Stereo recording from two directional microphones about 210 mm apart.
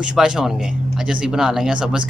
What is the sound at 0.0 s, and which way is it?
Speech, 5° right (ahead or behind).